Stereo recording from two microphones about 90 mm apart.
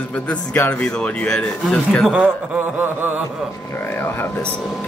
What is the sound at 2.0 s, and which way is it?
Speech, 15° right (ahead or behind).